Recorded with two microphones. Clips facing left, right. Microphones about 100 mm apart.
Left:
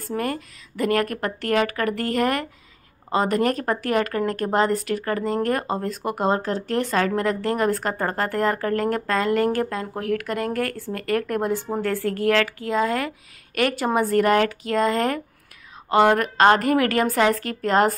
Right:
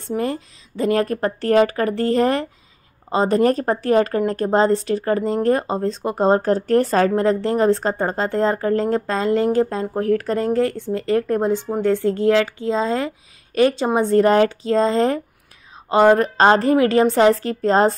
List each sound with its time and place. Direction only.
0.0 s speech: 25° right (ahead or behind)